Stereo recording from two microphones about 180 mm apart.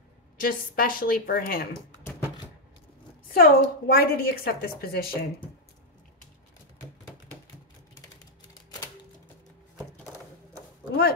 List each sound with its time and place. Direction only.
0.4 s a woman's voice: 55° left (ahead or behind)
2.0 s typewriter: 15° left (ahead or behind)
3.3 s a woman's voice: 55° left (ahead or behind)